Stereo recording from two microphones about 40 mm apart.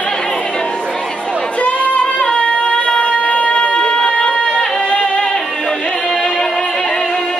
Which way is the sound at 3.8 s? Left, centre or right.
Centre.